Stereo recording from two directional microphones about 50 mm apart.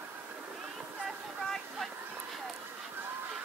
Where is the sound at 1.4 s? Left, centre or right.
Centre.